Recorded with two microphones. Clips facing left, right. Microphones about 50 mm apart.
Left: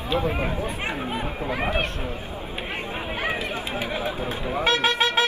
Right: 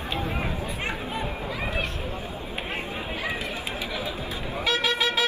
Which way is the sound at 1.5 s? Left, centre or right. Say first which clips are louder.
Left 7 dB; left.